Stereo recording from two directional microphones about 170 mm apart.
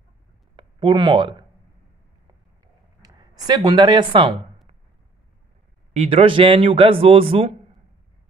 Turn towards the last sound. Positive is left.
turn(degrees=-35)  # may be behind; listen again after turning